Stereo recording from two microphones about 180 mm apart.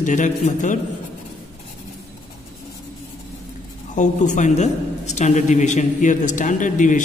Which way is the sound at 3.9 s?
45° left (ahead or behind).